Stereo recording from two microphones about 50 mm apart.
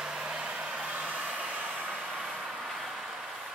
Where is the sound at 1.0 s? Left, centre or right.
Right.